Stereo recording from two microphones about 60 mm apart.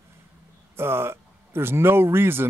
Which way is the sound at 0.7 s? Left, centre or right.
Right.